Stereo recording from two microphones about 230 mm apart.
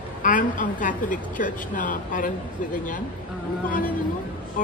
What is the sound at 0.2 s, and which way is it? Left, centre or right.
A woman's voice, left.